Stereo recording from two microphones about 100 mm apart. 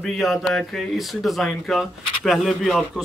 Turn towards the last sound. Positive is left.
turn(degrees=0)  # may be behind; listen again after turning